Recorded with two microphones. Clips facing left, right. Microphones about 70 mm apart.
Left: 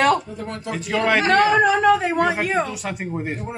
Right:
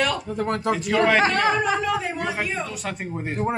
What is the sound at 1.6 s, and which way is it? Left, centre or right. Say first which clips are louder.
A woman's voice: left 7 dB; left.